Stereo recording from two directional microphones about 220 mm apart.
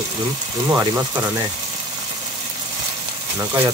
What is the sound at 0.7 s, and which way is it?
Speech, 15° right (ahead or behind).